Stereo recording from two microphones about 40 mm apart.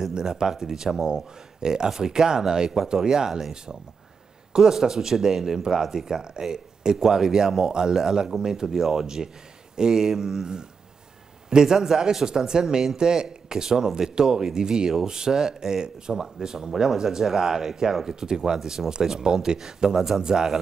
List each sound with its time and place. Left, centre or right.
0.0 s speech: centre